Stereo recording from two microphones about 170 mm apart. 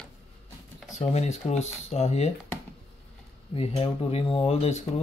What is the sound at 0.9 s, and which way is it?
Speech, 40° left (ahead or behind).